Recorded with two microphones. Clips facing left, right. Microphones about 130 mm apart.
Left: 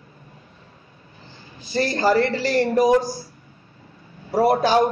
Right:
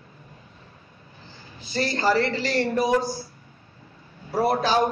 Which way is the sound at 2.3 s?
45° left (ahead or behind).